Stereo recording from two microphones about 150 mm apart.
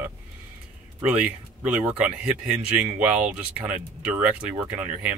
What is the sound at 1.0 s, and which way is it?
Speech, 10° right (ahead or behind).